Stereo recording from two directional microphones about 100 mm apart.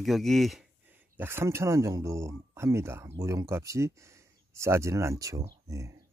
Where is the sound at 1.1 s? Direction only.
20° right (ahead or behind).